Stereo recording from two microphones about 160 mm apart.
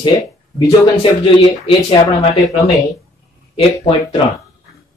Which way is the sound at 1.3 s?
30° left (ahead or behind).